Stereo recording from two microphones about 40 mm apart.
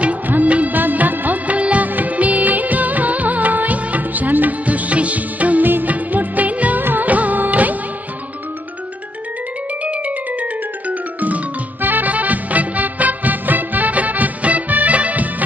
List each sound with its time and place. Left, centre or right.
0.3 s music of bollywood: right
2.0 s music: right
5.7 s music: right
6.8 s music of bollywood: right
7.1 s music: right
10.9 s music: right